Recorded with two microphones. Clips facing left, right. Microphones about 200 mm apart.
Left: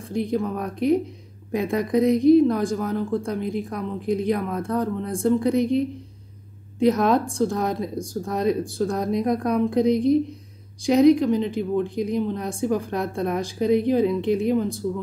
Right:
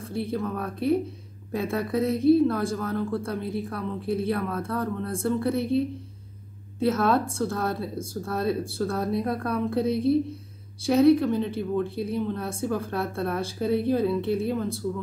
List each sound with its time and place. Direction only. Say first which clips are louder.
0.1 s a woman's voice: left 5 dB; 15° left (ahead or behind)